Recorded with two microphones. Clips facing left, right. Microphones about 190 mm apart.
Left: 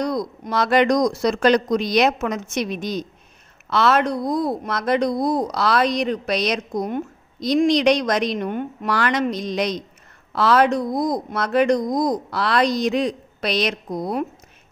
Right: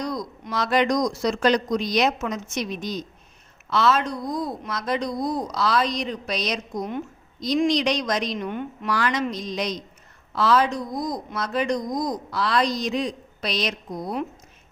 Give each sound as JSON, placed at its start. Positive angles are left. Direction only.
{"t": 0.0, "sound": "speech", "side_deg": 60}